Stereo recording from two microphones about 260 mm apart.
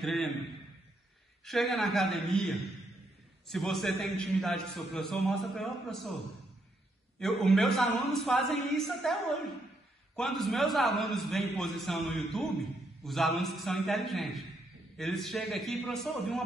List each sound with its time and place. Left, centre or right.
0.0 s a man's voice: centre
1.4 s a man's voice: centre
7.2 s a man's voice: centre